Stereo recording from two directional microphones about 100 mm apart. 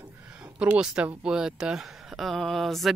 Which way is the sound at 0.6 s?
10° right (ahead or behind).